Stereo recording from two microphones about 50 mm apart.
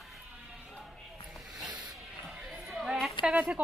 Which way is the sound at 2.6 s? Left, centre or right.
Centre.